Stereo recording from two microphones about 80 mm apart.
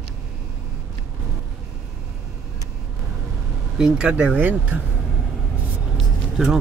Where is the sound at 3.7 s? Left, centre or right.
Centre.